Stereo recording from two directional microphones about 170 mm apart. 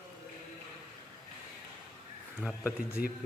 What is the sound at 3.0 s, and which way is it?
Speech, 60° left (ahead or behind).